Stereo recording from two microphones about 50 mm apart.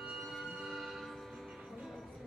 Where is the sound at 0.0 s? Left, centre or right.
Centre.